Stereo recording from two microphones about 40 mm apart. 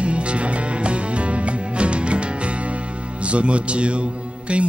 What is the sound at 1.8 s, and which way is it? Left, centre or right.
Music, right.